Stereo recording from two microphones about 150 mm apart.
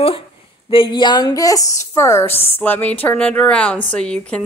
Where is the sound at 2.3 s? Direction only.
40° left (ahead or behind).